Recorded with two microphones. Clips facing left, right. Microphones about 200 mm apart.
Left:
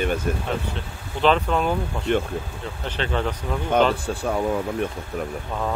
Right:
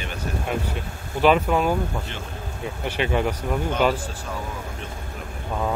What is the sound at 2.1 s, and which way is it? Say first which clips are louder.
Speech: left 15 dB; 55° left (ahead or behind).